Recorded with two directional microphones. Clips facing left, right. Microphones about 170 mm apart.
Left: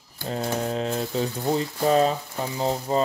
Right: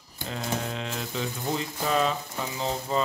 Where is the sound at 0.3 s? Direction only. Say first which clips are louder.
Left 5 dB; 35° left (ahead or behind).